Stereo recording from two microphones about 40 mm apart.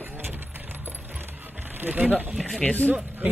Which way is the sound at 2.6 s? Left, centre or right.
Left.